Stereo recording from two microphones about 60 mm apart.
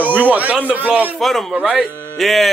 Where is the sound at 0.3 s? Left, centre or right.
Right.